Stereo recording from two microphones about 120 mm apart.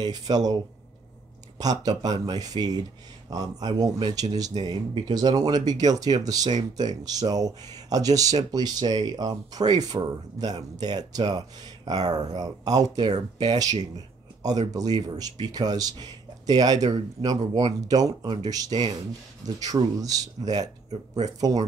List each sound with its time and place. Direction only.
0.0 s speech: 35° right (ahead or behind)
1.6 s speech: 30° right (ahead or behind)